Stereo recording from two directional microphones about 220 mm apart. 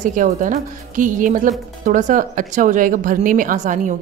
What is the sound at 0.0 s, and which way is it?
A woman's voice, 35° right (ahead or behind).